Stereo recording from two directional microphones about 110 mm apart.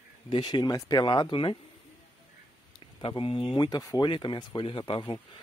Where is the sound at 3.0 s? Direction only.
55° left (ahead or behind).